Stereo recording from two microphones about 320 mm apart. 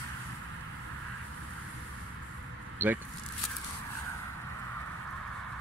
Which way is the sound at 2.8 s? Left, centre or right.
Centre.